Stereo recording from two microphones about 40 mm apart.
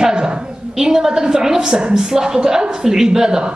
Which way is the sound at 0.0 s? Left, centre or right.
Centre.